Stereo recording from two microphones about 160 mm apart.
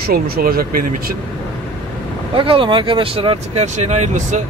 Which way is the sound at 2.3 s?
35° right (ahead or behind).